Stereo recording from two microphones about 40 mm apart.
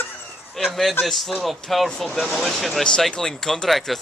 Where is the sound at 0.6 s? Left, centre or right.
Centre.